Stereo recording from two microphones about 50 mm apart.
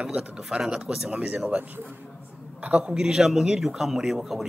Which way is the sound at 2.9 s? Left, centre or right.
Centre.